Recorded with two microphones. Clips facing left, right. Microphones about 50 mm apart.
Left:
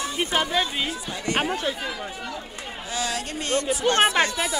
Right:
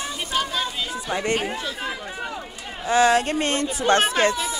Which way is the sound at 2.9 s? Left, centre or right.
Right.